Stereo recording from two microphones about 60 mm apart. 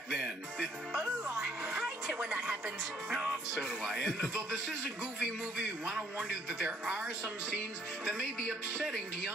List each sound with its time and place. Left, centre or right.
0.1 s music: centre
1.8 s music: centre
2.2 s speech: centre
5.2 s a man's voice: centre
8.0 s a man's voice: centre